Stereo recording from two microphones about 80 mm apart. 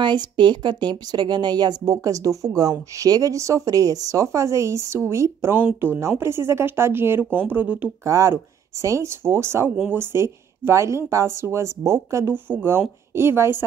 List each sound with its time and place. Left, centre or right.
0.0 s a woman's voice: right; by 7.9 s centre
8.0 s a woman's voice: right